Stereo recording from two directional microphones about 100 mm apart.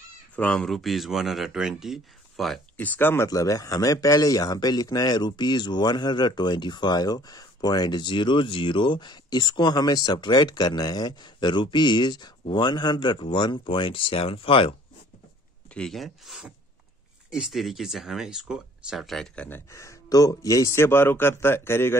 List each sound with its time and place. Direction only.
0.4 s speech: 15° left (ahead or behind)
0.7 s speech: centre (ahead or behind)
2.8 s speech: 20° left (ahead or behind)
3.3 s speech: 35° left (ahead or behind); by 14.8 s 65° left (ahead or behind)
15.7 s speech: 5° left (ahead or behind)
19.7 s speech: 30° left (ahead or behind)